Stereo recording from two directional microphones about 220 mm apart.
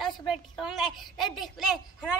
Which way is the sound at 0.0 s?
Centre (ahead or behind).